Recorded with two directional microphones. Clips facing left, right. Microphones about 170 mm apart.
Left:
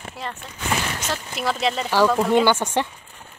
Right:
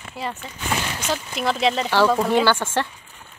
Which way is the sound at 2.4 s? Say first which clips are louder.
Left 1 dB; 20° left (ahead or behind).